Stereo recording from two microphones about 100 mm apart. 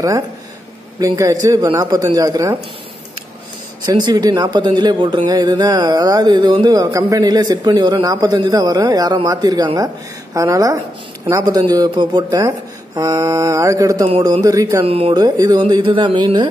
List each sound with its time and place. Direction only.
0.9 s speech: 35° right (ahead or behind)
3.8 s speech: 45° right (ahead or behind)
14.9 s speech: 70° right (ahead or behind)
15.1 s speech: 40° right (ahead or behind)
15.6 s speech: 55° right (ahead or behind)